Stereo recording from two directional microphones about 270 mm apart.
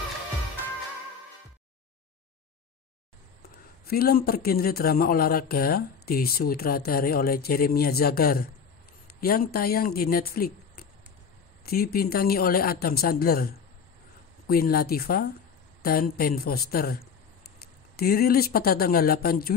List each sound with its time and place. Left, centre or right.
3.8 s a man's voice: left